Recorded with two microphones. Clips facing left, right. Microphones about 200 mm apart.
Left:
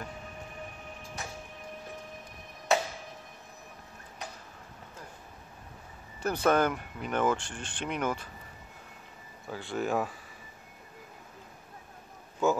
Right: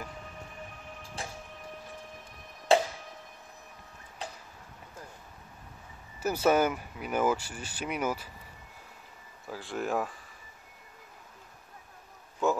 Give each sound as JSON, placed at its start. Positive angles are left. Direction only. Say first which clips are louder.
{"t": 1.2, "sound": "music", "louder": "right 2 dB", "side_deg": -30}
{"t": 2.7, "sound": "a sound", "louder": "right 4 dB", "side_deg": -30}
{"t": 6.2, "sound": "speech", "louder": "right 1 dB", "side_deg": -5}
{"t": 9.5, "sound": "speech", "louder": "left 1 dB", "side_deg": 0}
{"t": 12.4, "sound": "speech", "louder": "left 1 dB", "side_deg": 0}